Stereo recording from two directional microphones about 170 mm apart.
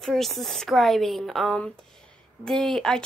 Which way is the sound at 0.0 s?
Centre (ahead or behind).